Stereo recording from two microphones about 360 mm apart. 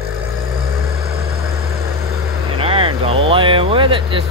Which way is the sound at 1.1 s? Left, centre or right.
Right.